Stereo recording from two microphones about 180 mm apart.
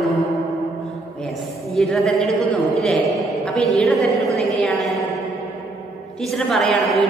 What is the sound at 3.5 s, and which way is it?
A woman's voice, centre (ahead or behind).